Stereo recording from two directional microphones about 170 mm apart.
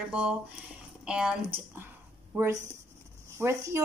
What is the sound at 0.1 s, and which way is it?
Speech, 5° right (ahead or behind).